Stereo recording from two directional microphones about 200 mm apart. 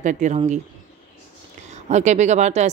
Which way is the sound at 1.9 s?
35° right (ahead or behind).